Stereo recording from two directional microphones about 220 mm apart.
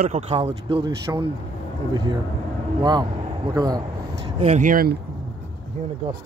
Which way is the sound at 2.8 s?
20° right (ahead or behind).